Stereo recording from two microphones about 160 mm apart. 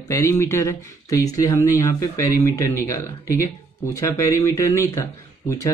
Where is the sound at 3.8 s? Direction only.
20° left (ahead or behind).